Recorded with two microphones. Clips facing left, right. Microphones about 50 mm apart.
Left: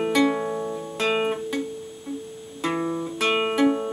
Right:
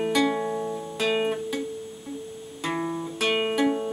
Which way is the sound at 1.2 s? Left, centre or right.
Centre.